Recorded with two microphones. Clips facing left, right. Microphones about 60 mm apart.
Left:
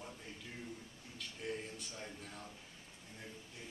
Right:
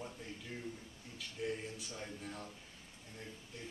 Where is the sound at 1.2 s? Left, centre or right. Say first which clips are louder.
Right 3 dB; centre.